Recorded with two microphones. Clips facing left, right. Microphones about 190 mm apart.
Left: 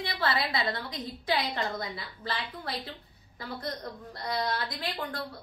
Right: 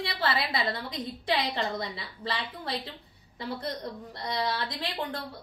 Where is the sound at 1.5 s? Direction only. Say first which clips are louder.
Right 2 dB; 25° right (ahead or behind).